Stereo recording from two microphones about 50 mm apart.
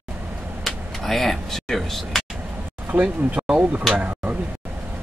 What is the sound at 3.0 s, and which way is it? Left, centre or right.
Speech, right.